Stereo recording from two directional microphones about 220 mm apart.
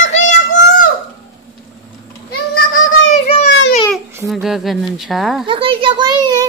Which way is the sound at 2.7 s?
60° left (ahead or behind).